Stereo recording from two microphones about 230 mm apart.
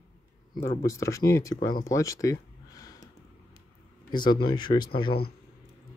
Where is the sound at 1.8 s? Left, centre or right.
Centre.